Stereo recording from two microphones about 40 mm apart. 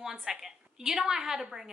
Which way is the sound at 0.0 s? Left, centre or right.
Centre.